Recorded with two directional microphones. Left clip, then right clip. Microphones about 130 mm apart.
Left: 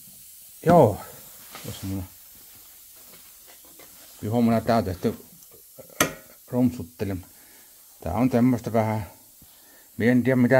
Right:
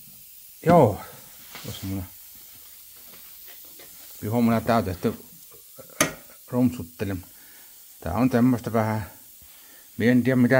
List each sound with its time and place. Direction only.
0.6 s speech: 5° left (ahead or behind)
1.7 s speech: 45° left (ahead or behind)
4.2 s speech: 10° left (ahead or behind)
6.5 s speech: centre (ahead or behind)